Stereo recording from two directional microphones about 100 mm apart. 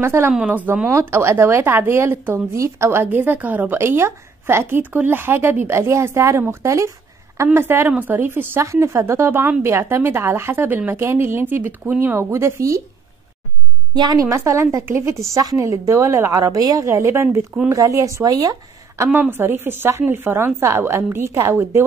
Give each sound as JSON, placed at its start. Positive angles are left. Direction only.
{"t": 0.0, "sound": "a woman's voice", "side_deg": -25}
{"t": 0.3, "sound": "a woman's voice", "side_deg": -10}
{"t": 12.2, "sound": "a woman's voice", "side_deg": -30}
{"t": 13.9, "sound": "a woman's voice", "side_deg": -45}
{"t": 14.3, "sound": "a woman's voice", "side_deg": -30}
{"t": 19.3, "sound": "a woman's voice", "side_deg": -20}